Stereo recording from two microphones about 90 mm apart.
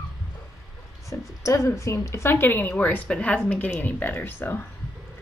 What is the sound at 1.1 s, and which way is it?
Speech, 35° left (ahead or behind).